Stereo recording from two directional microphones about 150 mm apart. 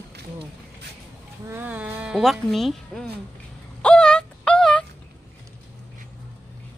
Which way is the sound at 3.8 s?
5° left (ahead or behind).